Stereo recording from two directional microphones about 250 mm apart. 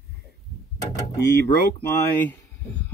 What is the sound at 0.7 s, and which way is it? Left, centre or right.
Mechanisms, centre.